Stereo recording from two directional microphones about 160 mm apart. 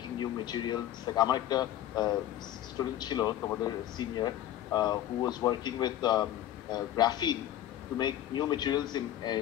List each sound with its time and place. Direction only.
0.2 s a man's voice: 25° left (ahead or behind)